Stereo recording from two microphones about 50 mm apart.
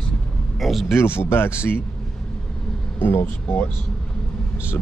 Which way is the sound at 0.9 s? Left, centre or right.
Left.